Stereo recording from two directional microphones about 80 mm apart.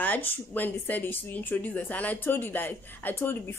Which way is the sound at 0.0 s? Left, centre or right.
Left.